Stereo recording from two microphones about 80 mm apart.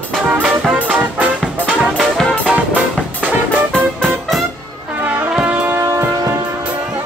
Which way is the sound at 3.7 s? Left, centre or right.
Centre.